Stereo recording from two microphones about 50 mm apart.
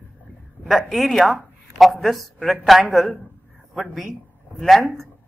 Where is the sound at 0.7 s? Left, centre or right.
Centre.